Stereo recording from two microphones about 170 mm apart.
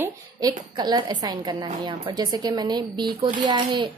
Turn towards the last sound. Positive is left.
turn(degrees=-25)  # may be behind; listen again after turning